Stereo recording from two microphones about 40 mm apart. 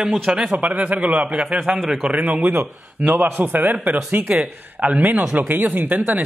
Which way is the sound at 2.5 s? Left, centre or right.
Right.